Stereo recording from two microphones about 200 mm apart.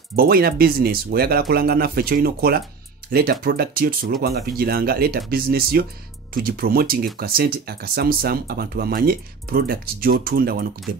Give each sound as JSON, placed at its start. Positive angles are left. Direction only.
{"t": 0.1, "sound": "speech", "side_deg": -50}